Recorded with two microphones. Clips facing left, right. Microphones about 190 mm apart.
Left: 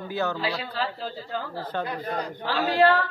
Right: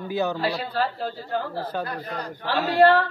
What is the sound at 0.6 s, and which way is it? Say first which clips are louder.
A man's voice: right 4 dB; 50° right (ahead or behind).